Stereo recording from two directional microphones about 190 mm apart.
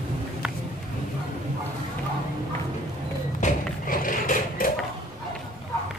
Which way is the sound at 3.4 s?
45° left (ahead or behind).